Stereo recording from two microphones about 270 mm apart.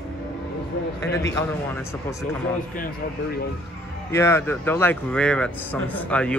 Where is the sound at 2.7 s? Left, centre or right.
Left.